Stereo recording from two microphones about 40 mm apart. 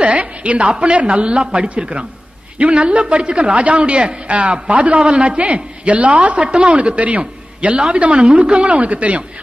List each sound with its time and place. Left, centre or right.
0.0 s a woman's voice: right